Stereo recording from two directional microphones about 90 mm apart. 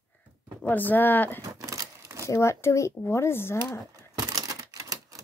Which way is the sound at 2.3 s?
30° left (ahead or behind).